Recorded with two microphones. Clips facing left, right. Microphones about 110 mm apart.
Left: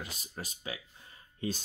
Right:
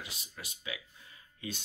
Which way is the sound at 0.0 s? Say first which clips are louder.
Left 5 dB; 40° left (ahead or behind).